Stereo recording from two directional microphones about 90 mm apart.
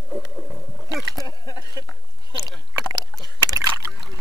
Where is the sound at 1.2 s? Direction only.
50° left (ahead or behind).